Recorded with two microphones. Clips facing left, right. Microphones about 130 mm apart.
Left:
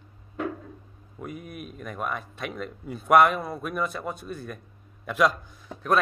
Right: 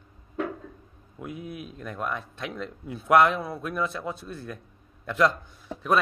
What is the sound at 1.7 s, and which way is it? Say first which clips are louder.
A man's voice: left 1 dB; 5° left (ahead or behind).